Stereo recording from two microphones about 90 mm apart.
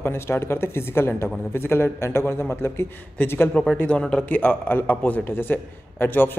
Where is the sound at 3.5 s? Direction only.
15° left (ahead or behind).